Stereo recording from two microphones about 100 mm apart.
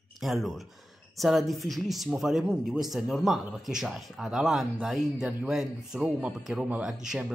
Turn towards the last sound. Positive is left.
turn(degrees=-5)  # may be behind; listen again after turning